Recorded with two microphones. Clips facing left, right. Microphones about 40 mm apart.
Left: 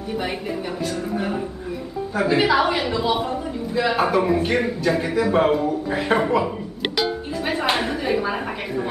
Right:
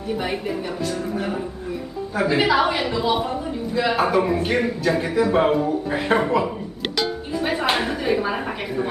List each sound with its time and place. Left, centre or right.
2.1 s a man's voice: centre